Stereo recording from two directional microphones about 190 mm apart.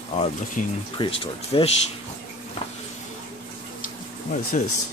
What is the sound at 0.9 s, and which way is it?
Speech, 25° left (ahead or behind).